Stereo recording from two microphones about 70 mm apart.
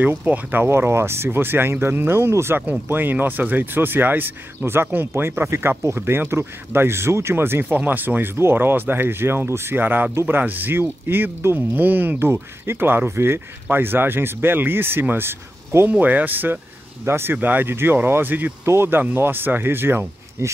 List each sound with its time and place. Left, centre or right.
0.0 s speech: right
0.7 s speech: right
15.9 s speech: right